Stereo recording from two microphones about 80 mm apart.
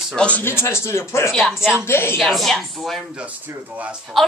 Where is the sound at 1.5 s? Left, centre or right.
Centre.